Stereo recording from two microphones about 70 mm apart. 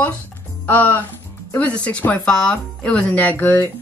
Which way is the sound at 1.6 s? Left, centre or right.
Centre.